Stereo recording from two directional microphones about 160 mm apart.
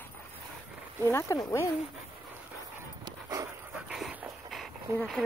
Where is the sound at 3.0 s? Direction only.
20° right (ahead or behind).